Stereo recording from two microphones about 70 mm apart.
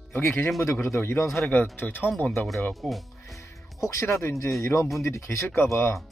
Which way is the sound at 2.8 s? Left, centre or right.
Centre.